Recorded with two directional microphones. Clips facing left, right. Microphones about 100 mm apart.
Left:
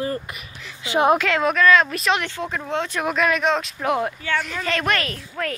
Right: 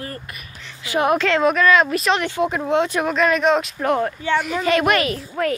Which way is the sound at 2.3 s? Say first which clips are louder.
Right 7 dB; 15° right (ahead or behind).